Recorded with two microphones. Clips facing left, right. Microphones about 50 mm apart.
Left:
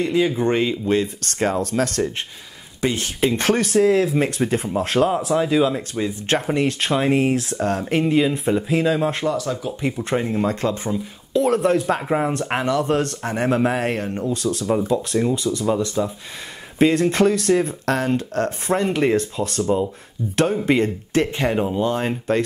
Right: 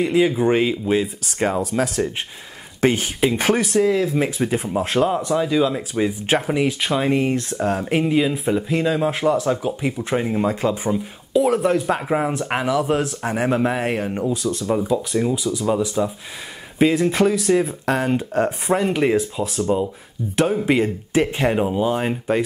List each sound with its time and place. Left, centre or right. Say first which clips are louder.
0.0 s speech: right 2 dB; centre
5.9 s speech: right 2 dB; centre
9.2 s speech: right 4 dB; right
9.8 s speech: even; centre